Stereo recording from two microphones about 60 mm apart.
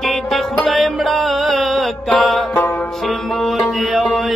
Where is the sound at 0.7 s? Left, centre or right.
Centre.